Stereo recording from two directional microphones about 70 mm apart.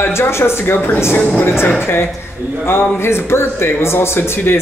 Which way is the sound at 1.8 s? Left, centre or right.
Left.